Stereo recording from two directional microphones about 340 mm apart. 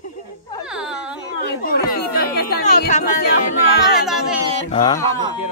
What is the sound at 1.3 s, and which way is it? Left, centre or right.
Speech, left.